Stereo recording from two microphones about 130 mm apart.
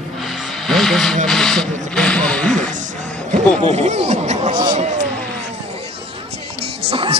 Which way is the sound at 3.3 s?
60° right (ahead or behind).